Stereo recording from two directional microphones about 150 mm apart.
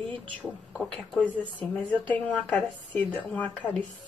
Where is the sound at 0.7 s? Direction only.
5° left (ahead or behind).